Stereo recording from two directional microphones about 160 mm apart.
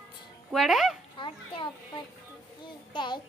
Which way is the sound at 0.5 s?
Centre (ahead or behind).